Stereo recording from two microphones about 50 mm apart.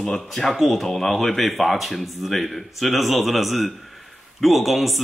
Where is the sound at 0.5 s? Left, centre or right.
Centre.